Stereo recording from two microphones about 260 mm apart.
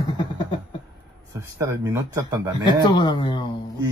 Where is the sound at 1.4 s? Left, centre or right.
Centre.